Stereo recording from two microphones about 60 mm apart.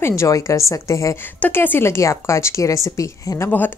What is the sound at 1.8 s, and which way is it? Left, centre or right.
A woman's voice, left.